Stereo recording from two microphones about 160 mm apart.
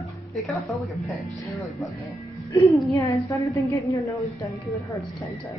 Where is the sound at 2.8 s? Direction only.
20° left (ahead or behind).